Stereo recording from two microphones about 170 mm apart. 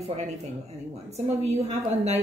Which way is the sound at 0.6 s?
40° right (ahead or behind).